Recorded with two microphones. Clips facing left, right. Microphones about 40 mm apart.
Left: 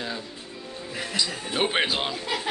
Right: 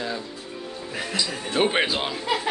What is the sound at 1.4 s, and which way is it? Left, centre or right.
Speech, centre.